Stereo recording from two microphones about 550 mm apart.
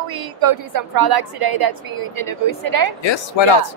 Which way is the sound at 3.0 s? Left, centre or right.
Left.